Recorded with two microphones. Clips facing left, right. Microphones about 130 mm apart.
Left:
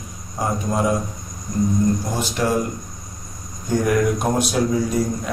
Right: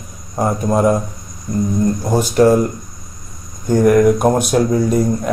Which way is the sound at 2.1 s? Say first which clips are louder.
Right 10 dB; 45° right (ahead or behind).